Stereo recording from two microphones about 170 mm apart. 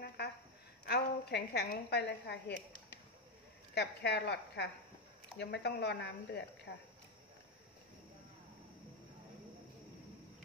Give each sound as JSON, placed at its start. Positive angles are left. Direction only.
{"t": 0.8, "sound": "a woman's voice", "side_deg": 75}
{"t": 3.7, "sound": "speech", "side_deg": 80}